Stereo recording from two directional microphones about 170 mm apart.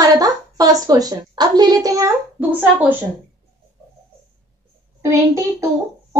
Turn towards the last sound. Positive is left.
turn(degrees=-15)  # may be behind; listen again after turning